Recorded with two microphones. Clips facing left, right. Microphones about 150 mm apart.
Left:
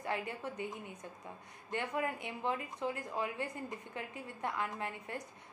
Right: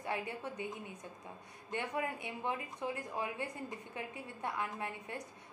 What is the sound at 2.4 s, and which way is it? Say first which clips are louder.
A woman's voice: left 2 dB; 20° right (ahead or behind).